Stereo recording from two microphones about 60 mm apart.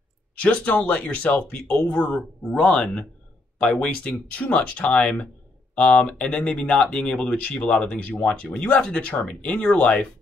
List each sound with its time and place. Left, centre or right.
0.4 s speech: left